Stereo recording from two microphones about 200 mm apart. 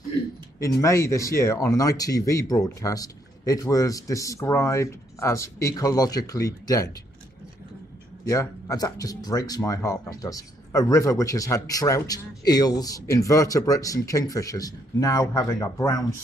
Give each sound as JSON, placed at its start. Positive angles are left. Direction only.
{"t": 0.7, "sound": "speech", "side_deg": 15}
{"t": 8.3, "sound": "speech", "side_deg": 15}